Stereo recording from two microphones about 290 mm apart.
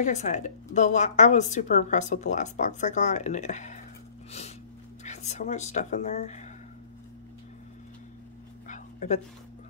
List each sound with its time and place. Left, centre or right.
0.0 s a woman's voice: left
5.0 s speech: left
8.6 s dog: left